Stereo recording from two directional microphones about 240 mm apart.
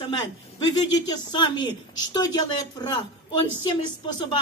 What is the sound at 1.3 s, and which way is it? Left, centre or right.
A woman's voice, centre.